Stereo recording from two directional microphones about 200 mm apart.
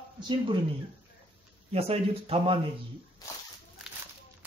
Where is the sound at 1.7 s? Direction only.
30° right (ahead or behind).